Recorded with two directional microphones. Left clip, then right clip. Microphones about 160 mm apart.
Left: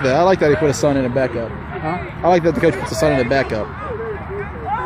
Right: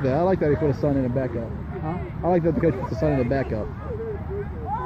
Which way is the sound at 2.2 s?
15° left (ahead or behind).